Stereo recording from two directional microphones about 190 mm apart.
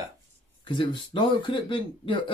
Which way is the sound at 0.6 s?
25° left (ahead or behind).